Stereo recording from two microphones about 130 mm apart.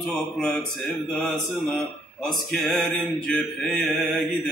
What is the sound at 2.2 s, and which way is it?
Mantra, 5° left (ahead or behind).